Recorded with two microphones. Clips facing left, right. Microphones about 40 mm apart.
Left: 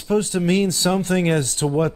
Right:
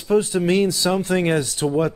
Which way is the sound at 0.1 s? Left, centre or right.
Centre.